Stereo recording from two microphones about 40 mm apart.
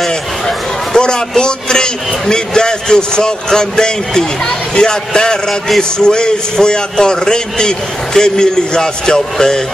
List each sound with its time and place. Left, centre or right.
0.5 s a man's voice: centre